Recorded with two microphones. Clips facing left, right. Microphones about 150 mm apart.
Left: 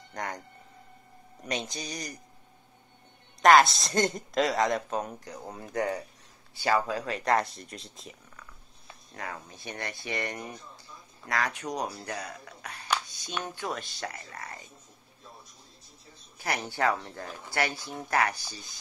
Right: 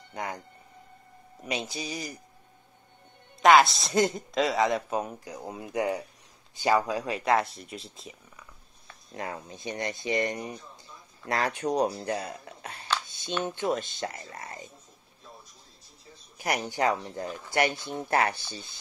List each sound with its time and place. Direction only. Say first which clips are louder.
0.1 s speech: right 1 dB; 10° right (ahead or behind)
1.4 s a woman's voice: right 1 dB; 5° right (ahead or behind)
3.4 s a woman's voice: even; centre (ahead or behind)
9.1 s speech: right 4 dB; 20° right (ahead or behind)
13.0 s a sound: right 1 dB; 25° right (ahead or behind)
13.4 s speech: right 6 dB; 20° right (ahead or behind)
16.3 s speech: right 2 dB; 15° right (ahead or behind)